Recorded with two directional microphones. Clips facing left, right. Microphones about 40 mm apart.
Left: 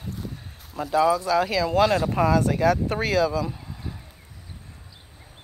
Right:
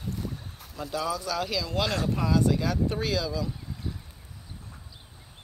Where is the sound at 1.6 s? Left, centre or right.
Left.